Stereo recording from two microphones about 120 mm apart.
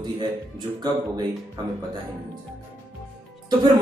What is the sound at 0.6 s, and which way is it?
Speech, 35° right (ahead or behind).